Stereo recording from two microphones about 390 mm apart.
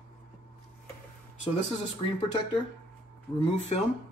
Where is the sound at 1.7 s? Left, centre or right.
Centre.